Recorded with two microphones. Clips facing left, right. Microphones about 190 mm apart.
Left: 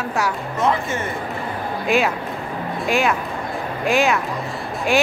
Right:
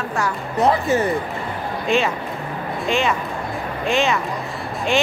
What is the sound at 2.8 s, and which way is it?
A woman's voice, 5° left (ahead or behind).